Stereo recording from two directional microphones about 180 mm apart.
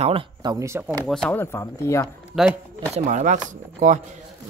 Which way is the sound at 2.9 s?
45° right (ahead or behind).